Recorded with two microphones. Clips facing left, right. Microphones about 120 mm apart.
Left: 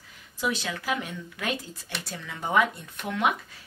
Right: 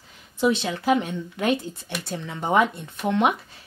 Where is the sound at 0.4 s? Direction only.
25° right (ahead or behind).